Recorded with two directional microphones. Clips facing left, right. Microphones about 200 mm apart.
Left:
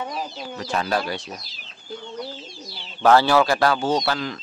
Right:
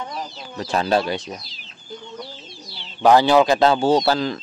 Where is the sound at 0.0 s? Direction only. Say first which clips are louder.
Left 1 dB; 5° left (ahead or behind).